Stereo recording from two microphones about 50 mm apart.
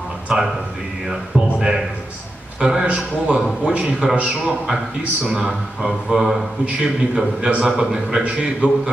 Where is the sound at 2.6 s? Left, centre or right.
Centre.